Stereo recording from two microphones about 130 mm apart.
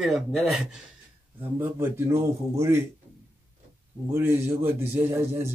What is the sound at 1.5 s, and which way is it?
A man's voice, 20° right (ahead or behind).